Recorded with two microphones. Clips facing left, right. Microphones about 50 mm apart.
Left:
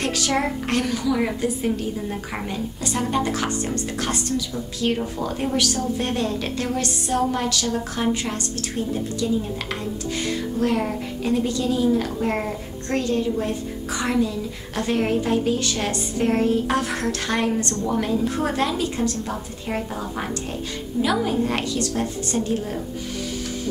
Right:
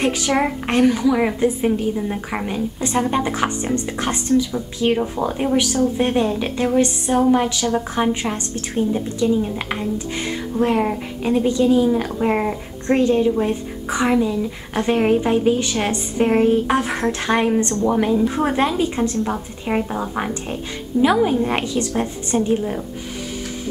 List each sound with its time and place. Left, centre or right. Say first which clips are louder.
0.0 s a woman's voice: right 4 dB; centre